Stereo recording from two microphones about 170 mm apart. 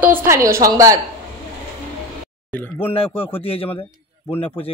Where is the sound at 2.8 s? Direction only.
35° left (ahead or behind).